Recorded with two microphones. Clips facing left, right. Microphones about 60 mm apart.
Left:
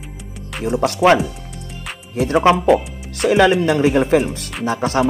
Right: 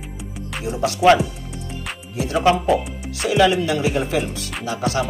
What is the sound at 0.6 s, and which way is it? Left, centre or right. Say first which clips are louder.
Speech: left 5 dB; left.